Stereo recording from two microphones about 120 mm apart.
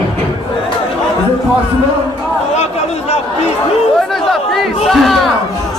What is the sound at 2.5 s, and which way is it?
Chatter, 65° left (ahead or behind).